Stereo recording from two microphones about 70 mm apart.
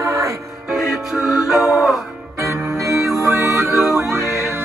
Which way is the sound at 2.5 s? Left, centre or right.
Right.